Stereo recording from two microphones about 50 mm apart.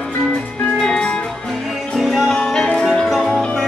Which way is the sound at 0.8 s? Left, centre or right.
Centre.